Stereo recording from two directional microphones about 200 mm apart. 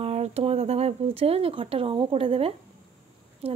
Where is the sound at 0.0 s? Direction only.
30° right (ahead or behind).